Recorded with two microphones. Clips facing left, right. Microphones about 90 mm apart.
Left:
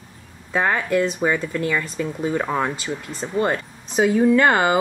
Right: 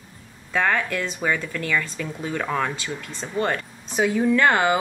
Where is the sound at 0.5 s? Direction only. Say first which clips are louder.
Left 3 dB; 15° left (ahead or behind).